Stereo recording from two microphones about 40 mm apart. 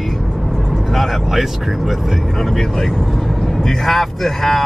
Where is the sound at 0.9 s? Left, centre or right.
Centre.